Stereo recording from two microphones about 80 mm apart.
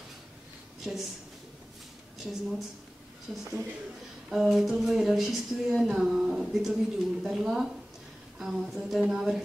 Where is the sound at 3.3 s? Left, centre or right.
Centre.